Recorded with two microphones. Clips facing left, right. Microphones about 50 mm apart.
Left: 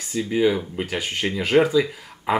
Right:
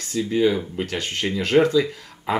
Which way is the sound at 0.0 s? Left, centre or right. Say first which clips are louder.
Even; centre.